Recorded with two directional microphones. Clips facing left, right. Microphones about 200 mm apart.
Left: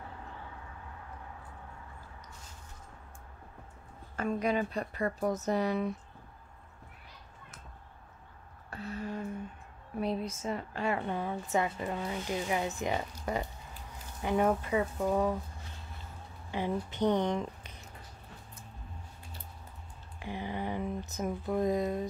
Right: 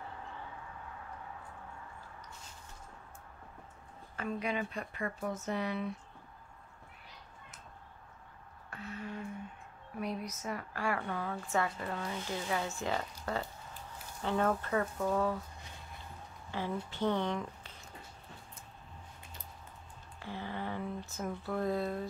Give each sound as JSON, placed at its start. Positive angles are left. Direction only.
{"t": 4.2, "sound": "speech", "side_deg": 40}
{"t": 8.6, "sound": "a sound", "side_deg": 35}
{"t": 9.9, "sound": "a woman's voice", "side_deg": 30}
{"t": 16.5, "sound": "speech", "side_deg": 20}
{"t": 20.2, "sound": "speech", "side_deg": 15}